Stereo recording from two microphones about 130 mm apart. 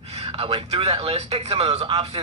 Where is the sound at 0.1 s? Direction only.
50° right (ahead or behind).